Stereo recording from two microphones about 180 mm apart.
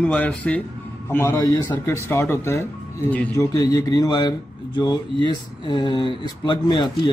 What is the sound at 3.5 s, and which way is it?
Speech, 20° left (ahead or behind).